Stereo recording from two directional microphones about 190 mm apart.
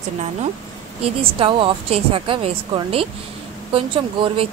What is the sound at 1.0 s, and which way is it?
Speech, 25° right (ahead or behind).